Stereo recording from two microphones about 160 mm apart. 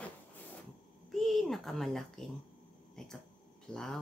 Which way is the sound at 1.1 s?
Centre (ahead or behind).